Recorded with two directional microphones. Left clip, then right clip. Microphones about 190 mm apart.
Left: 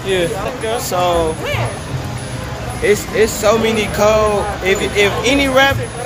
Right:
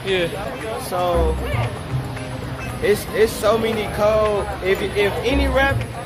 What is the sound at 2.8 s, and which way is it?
Speech, centre (ahead or behind).